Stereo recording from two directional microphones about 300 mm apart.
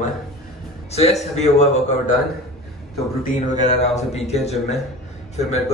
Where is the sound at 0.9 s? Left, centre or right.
Left.